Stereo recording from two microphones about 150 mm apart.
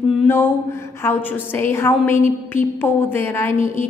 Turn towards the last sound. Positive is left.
turn(degrees=15)  # may be behind; listen again after turning